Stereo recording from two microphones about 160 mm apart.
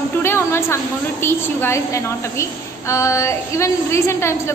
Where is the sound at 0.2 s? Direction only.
15° left (ahead or behind).